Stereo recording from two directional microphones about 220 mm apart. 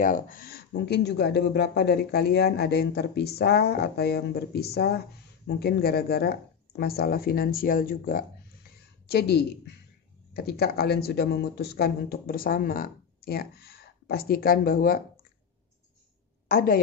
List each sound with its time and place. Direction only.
0.0 s speech: 40° left (ahead or behind)
16.4 s a woman's voice: 40° left (ahead or behind)